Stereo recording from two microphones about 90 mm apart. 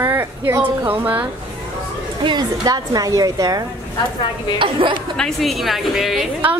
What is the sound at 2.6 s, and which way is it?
A woman's voice, 45° right (ahead or behind).